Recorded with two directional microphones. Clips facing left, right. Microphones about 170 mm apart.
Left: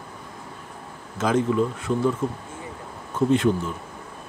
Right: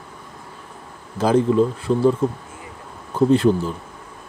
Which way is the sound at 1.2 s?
35° right (ahead or behind).